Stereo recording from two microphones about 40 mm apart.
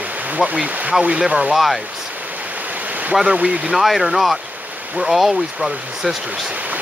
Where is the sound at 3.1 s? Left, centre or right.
Centre.